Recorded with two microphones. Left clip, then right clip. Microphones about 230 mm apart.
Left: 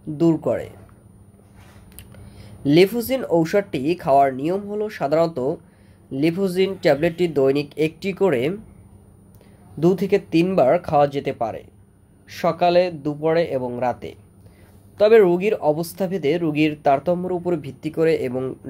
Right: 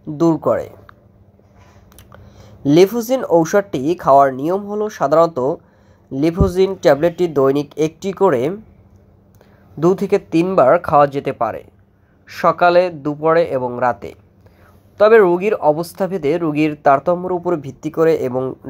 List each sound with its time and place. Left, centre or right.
0.2 s speech: centre
2.3 s speech: centre
9.8 s speech: centre